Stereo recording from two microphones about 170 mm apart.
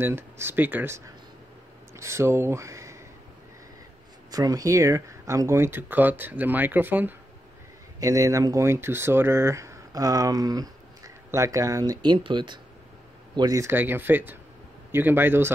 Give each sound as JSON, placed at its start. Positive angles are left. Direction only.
{"t": 0.0, "sound": "speech", "side_deg": -15}
{"t": 4.3, "sound": "speech", "side_deg": -20}